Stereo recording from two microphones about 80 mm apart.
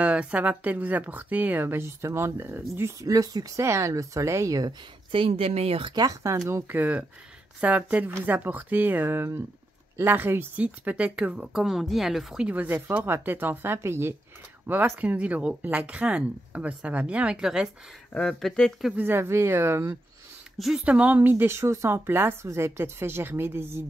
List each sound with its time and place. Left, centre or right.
0.0 s speech: centre; by 3.1 s right
3.1 s speech: right
5.1 s speech: right
5.9 s speech: right
6.7 s speech: right
11.5 s speech: centre
12.4 s speech: right
15.0 s speech: centre
18.1 s speech: centre
18.9 s speech: right
20.5 s speech: centre
20.8 s speech: centre